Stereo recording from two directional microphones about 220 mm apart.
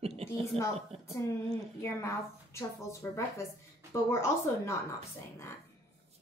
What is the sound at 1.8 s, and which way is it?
A woman's voice, 10° left (ahead or behind).